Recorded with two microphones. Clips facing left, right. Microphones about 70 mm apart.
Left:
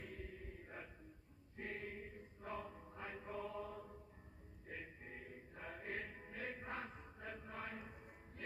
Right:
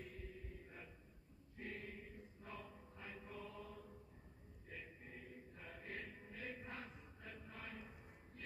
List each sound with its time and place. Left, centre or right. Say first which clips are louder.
0.0 s mantra: left 2 dB; left
1.6 s chant: left 3 dB; left
4.6 s music: left 3 dB; left
7.4 s a sound: left 4 dB; left